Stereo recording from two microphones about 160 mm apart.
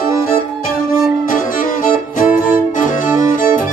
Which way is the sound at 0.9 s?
60° left (ahead or behind).